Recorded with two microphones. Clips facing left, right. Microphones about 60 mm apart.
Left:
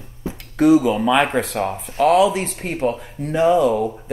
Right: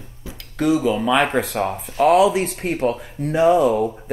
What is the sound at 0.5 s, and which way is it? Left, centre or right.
Speech, left.